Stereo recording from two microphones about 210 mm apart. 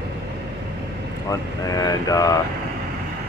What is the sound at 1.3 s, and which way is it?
Speech, 15° left (ahead or behind).